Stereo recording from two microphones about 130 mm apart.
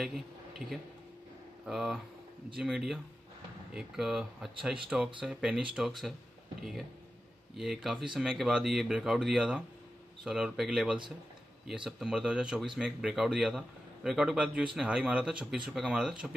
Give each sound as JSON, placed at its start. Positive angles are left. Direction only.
{"t": 0.0, "sound": "a man's voice", "side_deg": 0}
{"t": 7.5, "sound": "speech", "side_deg": 0}